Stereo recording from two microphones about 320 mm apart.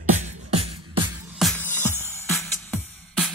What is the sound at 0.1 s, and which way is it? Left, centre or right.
Beatboxing, right.